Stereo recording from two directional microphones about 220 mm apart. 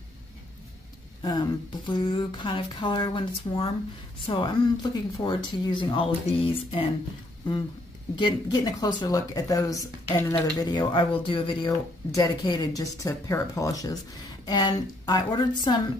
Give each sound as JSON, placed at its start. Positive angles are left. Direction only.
{"t": 1.2, "sound": "speech", "side_deg": 20}
{"t": 8.2, "sound": "speech", "side_deg": 20}